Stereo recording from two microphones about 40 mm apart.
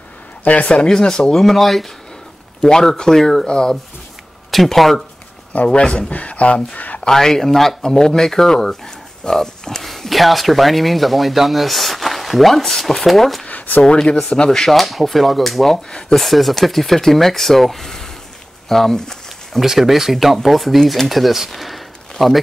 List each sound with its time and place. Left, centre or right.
0.7 s speech: centre
1.3 s speech: centre
3.4 s speech: centre
4.5 s speech: centre
5.7 s speech: left
7.1 s speech: centre
13.5 s a sound: left
13.8 s speech: centre
14.6 s speech: centre
18.7 s a sound: centre
19.6 s speech: centre
21.5 s a sound: centre
22.2 s speech: centre